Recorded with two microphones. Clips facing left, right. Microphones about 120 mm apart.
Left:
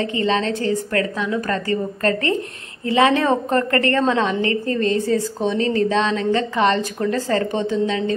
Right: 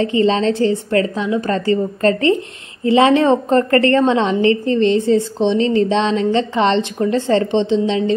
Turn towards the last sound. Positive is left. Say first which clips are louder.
# right 5 dB
turn(degrees=-25)  # may be behind; listen again after turning